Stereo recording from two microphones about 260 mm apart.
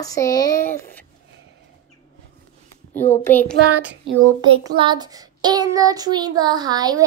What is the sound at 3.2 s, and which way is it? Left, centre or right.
Speech, centre.